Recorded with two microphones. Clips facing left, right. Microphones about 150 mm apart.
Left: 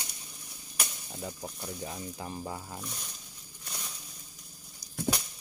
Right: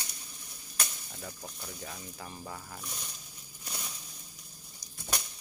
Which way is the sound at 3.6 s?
5° right (ahead or behind).